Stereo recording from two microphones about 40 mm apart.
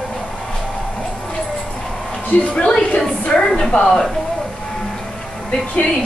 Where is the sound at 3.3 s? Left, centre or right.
Centre.